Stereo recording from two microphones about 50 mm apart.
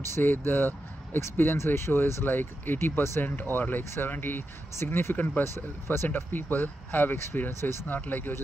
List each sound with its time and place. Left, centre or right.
0.2 s speech: left
2.2 s speech: left